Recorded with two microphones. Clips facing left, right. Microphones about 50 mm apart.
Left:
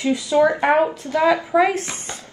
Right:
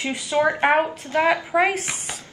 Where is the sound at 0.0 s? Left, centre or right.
Right.